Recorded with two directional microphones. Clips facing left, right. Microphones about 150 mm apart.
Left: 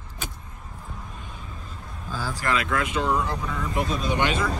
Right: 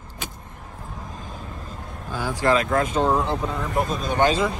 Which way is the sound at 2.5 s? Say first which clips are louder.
Right 4 dB; 40° right (ahead or behind).